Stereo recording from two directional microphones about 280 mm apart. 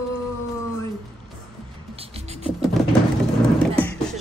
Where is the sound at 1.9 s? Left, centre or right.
Right.